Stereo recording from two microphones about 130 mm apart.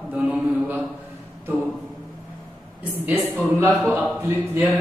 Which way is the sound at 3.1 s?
15° right (ahead or behind).